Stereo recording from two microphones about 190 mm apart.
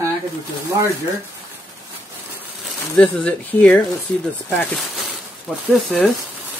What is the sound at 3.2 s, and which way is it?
Speech, 5° left (ahead or behind).